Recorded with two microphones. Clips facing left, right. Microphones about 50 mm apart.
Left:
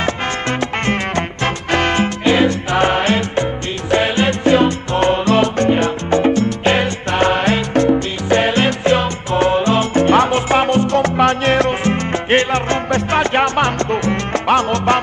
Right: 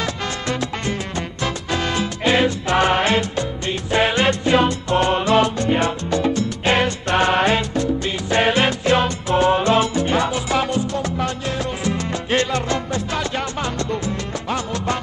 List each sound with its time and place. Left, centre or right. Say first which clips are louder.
0.0 s music: left 5 dB; left
0.9 s music: left 7 dB; left
3.9 s salsa music: left 2 dB; left
5.7 s music: left 4 dB; left
9.4 s salsa music: left 2 dB; left